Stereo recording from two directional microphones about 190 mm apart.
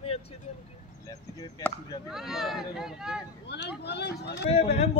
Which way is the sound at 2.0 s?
Centre (ahead or behind).